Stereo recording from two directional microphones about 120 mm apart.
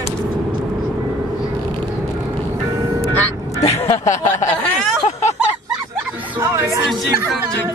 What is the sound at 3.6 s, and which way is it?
Speech, 60° left (ahead or behind).